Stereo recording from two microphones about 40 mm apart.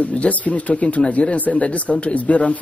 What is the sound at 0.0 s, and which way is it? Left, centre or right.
Speech, left.